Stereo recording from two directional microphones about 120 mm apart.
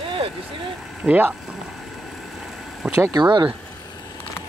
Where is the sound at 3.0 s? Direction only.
35° right (ahead or behind).